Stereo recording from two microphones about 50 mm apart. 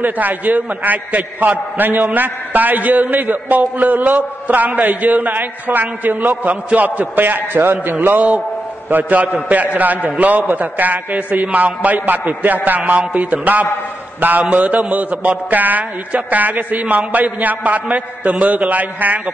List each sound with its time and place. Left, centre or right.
0.0 s a man's voice: right